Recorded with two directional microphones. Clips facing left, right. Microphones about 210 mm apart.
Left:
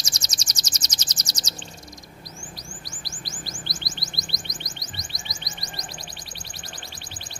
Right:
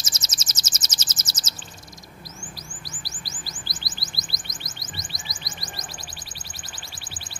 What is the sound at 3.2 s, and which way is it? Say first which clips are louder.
Chirp: left 3 dB; centre (ahead or behind).